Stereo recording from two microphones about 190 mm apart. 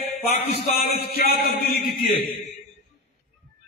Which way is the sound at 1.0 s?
55° left (ahead or behind).